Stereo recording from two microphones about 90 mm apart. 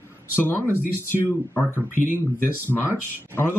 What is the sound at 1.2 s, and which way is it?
Speech, 20° left (ahead or behind).